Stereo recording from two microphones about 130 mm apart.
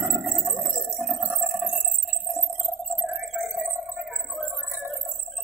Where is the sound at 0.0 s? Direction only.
5° right (ahead or behind).